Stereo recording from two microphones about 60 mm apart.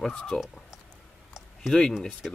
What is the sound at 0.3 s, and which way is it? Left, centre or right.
Speech, centre.